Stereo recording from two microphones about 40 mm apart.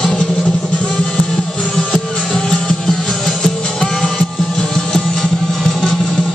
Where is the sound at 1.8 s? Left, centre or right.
Left.